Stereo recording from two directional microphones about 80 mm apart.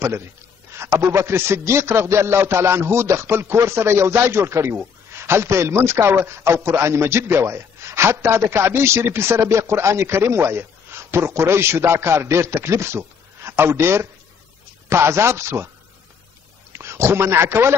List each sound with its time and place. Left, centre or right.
0.7 s a man's voice: right
16.7 s a man's voice: right